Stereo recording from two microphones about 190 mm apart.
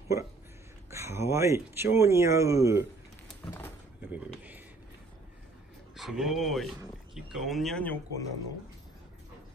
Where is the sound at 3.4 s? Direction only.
10° left (ahead or behind).